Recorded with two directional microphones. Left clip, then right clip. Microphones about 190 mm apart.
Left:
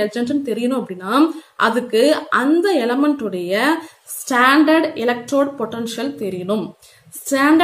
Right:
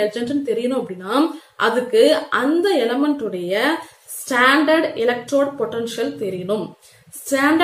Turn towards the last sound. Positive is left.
turn(degrees=40)  # may be behind; listen again after turning